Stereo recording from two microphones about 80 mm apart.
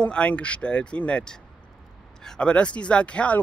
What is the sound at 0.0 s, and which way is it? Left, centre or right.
Speech, centre.